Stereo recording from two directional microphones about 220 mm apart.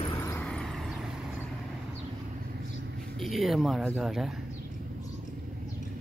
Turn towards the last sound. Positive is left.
turn(degrees=0)  # may be behind; listen again after turning